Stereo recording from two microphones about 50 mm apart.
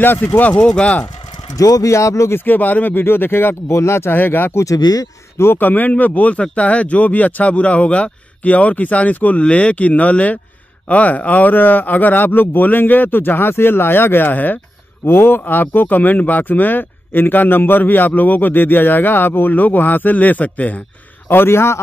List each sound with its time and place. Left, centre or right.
0.0 s speech: left
0.4 s speech: left
1.9 s speech: left
2.3 s speech: left
3.7 s a man's voice: left
4.2 s speech: left
5.6 s speech: left
6.3 s speech: left
15.0 s speech: left
21.3 s a man's voice: left